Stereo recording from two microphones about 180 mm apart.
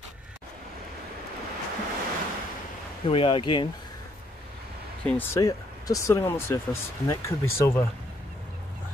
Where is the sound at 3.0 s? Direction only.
30° left (ahead or behind).